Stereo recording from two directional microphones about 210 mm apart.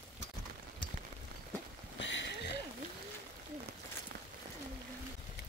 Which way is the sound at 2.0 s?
60° left (ahead or behind).